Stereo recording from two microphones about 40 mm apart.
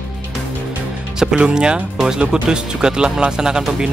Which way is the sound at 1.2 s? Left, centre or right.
Right.